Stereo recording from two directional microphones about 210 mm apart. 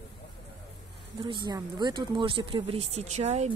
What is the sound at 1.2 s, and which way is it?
Speech, 20° right (ahead or behind).